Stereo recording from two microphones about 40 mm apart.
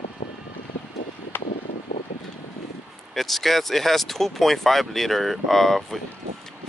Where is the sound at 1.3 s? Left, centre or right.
Left.